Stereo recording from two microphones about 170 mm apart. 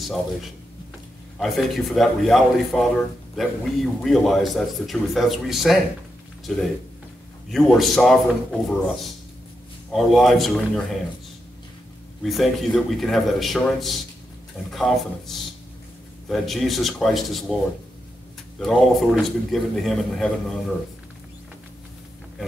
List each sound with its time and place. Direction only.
0.0 s a man's voice: centre (ahead or behind)
12.2 s a man's voice: centre (ahead or behind)
18.6 s a man's voice: centre (ahead or behind)